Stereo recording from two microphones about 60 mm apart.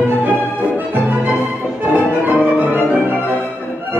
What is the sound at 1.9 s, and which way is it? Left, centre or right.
Music, right.